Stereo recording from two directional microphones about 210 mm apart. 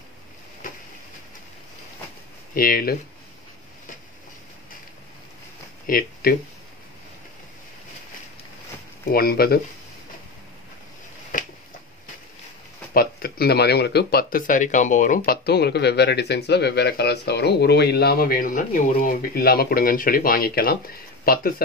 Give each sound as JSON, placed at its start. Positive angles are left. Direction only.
{"t": 0.6, "sound": "a sound", "side_deg": 40}
{"t": 2.5, "sound": "speech", "side_deg": 45}
{"t": 5.9, "sound": "speech", "side_deg": 45}
{"t": 9.1, "sound": "speech", "side_deg": 45}
{"t": 12.9, "sound": "speech", "side_deg": 45}